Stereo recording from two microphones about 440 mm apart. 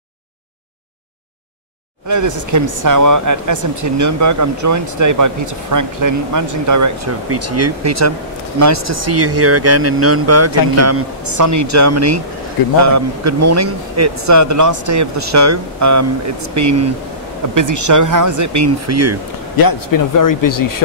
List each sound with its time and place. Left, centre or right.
2.0 s speech: right
19.5 s speech: left